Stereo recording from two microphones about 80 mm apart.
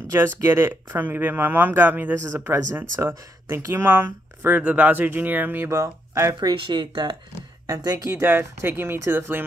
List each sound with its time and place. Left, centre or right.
0.1 s speech: right
6.4 s speech: right
7.8 s speech: right
8.3 s speech: right